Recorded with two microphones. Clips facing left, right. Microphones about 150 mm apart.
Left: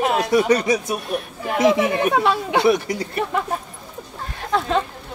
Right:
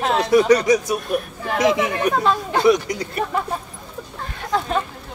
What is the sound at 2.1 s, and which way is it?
Speech, 75° left (ahead or behind).